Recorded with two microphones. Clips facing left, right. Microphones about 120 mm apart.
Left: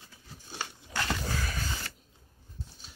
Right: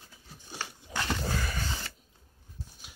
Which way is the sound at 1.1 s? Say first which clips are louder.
Right 1 dB; centre (ahead or behind).